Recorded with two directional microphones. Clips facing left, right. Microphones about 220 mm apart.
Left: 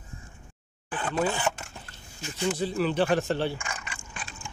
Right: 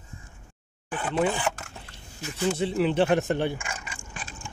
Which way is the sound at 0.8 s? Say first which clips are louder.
Right 1 dB; 10° right (ahead or behind).